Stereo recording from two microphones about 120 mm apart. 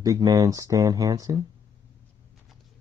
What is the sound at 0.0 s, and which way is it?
Speech, 30° right (ahead or behind).